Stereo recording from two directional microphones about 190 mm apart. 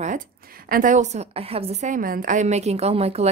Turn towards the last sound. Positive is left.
turn(degrees=-35)  # may be behind; listen again after turning